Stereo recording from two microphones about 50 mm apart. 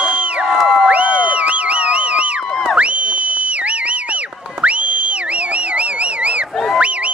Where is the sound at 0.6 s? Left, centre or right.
Centre.